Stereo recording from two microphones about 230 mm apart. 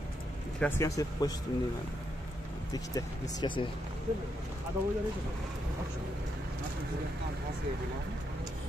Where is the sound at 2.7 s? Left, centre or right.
Centre.